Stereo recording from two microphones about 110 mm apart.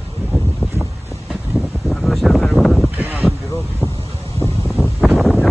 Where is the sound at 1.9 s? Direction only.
Centre (ahead or behind).